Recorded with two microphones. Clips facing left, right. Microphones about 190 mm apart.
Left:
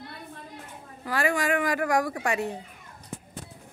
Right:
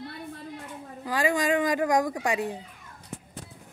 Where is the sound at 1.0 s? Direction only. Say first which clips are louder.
Right 1 dB; 15° right (ahead or behind).